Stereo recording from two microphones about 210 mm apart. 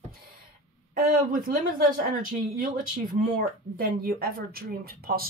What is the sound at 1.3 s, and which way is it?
Speech, 40° right (ahead or behind).